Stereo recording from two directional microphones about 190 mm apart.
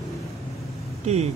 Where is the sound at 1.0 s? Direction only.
35° right (ahead or behind).